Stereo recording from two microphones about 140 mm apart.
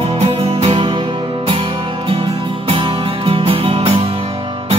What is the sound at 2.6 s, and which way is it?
Music, 40° right (ahead or behind).